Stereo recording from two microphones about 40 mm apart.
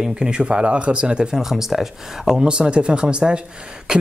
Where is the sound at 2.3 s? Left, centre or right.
Right.